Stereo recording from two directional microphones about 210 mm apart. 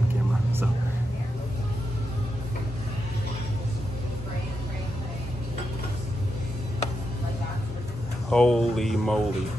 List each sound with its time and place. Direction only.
8.3 s speech: 5° left (ahead or behind)